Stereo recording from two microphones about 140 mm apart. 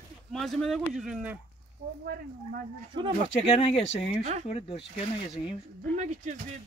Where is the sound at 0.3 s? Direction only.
Centre (ahead or behind).